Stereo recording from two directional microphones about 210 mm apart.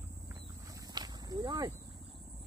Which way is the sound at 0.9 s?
20° right (ahead or behind).